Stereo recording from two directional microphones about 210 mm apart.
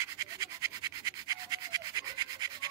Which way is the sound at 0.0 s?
15° right (ahead or behind).